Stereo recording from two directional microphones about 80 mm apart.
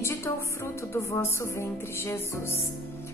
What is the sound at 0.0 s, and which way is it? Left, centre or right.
Music, left.